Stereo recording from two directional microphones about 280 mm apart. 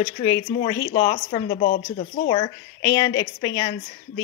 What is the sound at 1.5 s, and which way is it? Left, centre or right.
Speech, left.